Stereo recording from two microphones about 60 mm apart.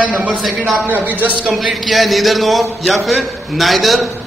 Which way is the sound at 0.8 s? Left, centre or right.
Right.